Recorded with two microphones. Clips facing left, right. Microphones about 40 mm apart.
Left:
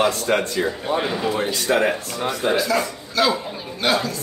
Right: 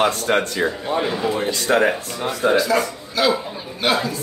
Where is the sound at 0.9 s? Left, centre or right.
Centre.